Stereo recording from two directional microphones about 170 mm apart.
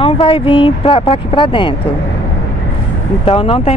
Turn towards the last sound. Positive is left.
turn(degrees=35)  # may be behind; listen again after turning